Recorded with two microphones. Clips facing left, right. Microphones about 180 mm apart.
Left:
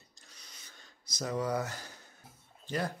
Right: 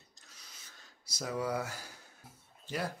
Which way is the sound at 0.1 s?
Centre (ahead or behind).